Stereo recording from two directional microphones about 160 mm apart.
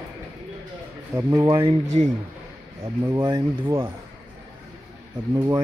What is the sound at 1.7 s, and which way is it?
Speech, 45° right (ahead or behind).